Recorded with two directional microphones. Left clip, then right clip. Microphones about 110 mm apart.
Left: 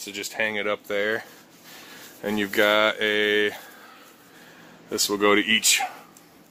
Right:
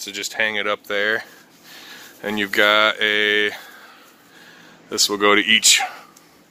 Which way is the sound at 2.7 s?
35° left (ahead or behind).